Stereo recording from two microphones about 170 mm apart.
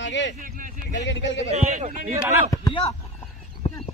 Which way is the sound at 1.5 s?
45° right (ahead or behind).